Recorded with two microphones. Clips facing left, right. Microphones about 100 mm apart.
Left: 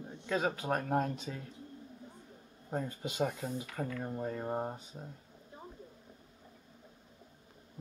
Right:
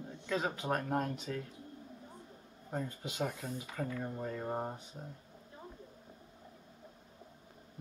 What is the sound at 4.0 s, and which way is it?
Speech, 15° left (ahead or behind).